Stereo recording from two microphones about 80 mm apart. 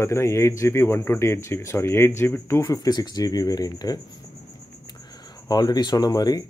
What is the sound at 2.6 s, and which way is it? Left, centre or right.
Speech, left.